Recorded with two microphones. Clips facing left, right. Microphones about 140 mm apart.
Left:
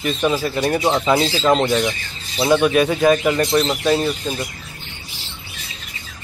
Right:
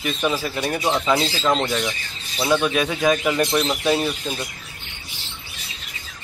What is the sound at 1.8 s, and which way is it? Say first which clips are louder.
Speech: left 5 dB; 25° left (ahead or behind).